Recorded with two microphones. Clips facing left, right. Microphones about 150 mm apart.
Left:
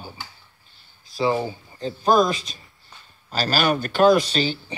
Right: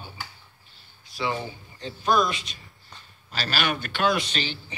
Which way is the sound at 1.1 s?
35° left (ahead or behind).